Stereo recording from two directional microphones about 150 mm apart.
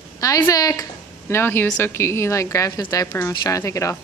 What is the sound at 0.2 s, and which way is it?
Speech, 25° left (ahead or behind).